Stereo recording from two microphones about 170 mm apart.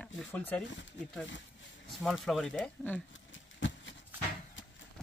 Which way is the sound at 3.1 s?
90° left.